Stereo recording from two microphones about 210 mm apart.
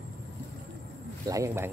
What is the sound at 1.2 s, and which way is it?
Speech, 15° right (ahead or behind).